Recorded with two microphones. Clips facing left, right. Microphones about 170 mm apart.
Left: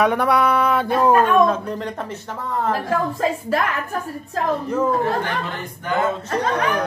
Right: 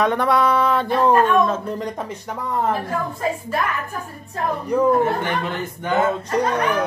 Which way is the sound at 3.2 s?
90° left.